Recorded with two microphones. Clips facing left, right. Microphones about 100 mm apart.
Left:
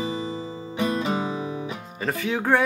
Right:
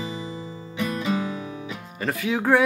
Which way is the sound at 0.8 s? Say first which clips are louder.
Left 1 dB; 30° left (ahead or behind).